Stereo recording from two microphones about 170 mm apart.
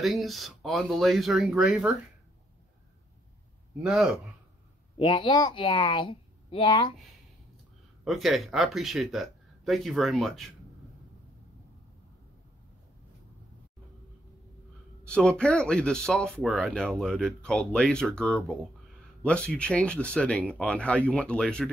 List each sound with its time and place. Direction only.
0.0 s speech: centre (ahead or behind)
3.8 s speech: 5° right (ahead or behind)
4.9 s a woman's voice: 30° left (ahead or behind)
8.0 s speech: centre (ahead or behind)
15.0 s speech: 5° left (ahead or behind)